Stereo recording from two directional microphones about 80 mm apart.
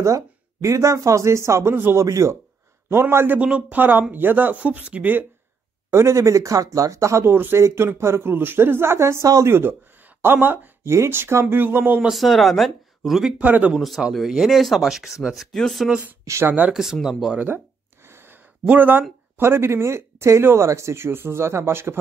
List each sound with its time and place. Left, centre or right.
0.0 s speech: right
3.3 s speech: centre
5.9 s speech: right
12.1 s speech: centre
13.4 s speech: centre
13.7 s speech: centre
16.4 s speech: centre
16.7 s speech: centre
18.0 s a sound: right
19.3 s speech: right